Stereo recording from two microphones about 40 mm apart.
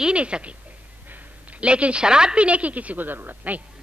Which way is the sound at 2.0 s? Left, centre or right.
Centre.